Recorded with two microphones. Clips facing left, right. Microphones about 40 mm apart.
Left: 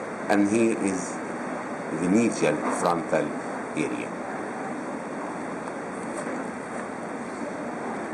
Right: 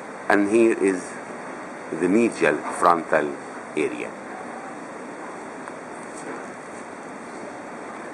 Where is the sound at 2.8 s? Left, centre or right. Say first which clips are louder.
Right 5 dB; centre.